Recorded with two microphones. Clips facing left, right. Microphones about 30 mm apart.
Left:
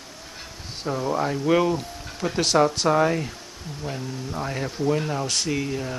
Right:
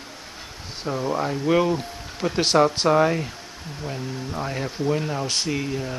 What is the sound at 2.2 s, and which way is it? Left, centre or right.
Speech, centre.